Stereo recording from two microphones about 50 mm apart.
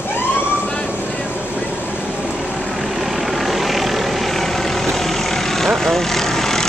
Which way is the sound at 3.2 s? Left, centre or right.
Centre.